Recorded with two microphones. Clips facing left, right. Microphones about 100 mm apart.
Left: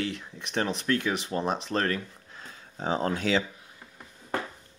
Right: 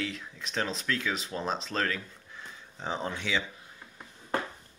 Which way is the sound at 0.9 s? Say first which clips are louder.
Left 7 dB; 35° left (ahead or behind).